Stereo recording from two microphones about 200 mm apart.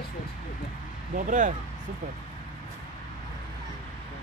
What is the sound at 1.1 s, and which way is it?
Speech, 40° right (ahead or behind).